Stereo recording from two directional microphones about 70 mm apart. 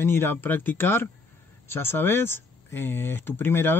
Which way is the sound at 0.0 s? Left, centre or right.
Left.